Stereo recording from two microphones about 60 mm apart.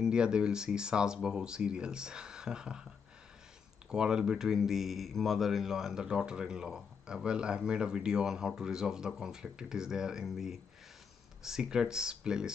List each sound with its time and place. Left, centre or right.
0.0 s speech: centre
3.9 s speech: centre